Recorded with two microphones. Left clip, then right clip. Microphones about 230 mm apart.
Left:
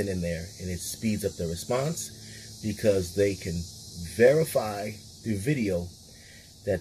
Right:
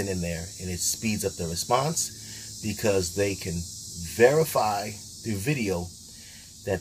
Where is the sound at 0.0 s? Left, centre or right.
Centre.